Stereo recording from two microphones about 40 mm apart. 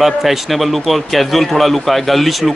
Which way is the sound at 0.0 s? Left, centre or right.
Centre.